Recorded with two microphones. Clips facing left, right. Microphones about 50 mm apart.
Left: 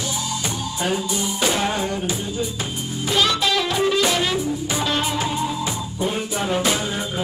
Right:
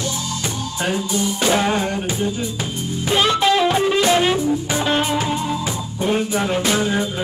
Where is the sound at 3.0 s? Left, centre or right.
Right.